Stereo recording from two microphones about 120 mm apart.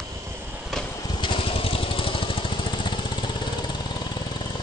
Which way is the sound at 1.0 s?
40° left (ahead or behind).